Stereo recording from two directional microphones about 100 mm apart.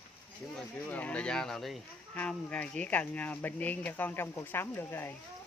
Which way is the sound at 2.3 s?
10° left (ahead or behind).